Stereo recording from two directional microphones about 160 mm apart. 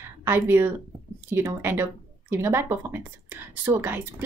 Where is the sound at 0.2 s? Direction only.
15° right (ahead or behind).